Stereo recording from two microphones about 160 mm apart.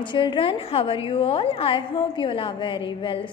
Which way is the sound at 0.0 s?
30° left (ahead or behind).